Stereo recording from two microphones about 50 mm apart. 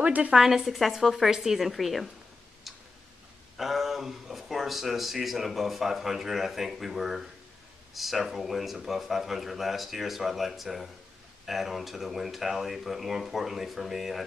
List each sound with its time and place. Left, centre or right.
0.0 s a woman's voice: right
0.3 s speech: centre
2.7 s tick-tock: centre
3.5 s speech: centre